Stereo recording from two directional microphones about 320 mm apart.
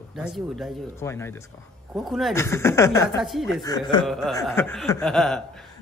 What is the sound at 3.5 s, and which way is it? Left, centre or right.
Speech, centre.